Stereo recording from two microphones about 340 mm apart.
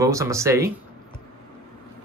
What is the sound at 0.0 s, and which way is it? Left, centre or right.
Speech, centre.